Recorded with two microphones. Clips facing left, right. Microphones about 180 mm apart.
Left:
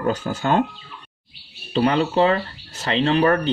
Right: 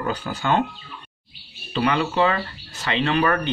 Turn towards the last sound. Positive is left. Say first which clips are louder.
# left 3 dB
turn(degrees=35)  # may be behind; listen again after turning